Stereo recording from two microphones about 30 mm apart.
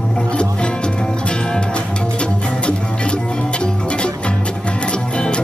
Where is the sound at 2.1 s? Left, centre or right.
Left.